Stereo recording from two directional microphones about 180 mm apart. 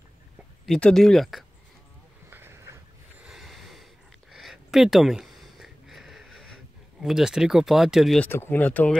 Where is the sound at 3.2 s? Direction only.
Centre (ahead or behind).